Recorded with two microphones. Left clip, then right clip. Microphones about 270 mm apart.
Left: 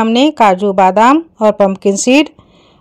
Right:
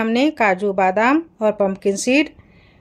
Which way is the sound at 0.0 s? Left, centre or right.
Left.